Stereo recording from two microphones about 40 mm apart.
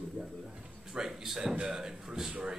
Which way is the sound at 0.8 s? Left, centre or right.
Centre.